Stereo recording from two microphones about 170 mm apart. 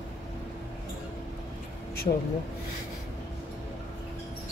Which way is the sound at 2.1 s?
45° left (ahead or behind).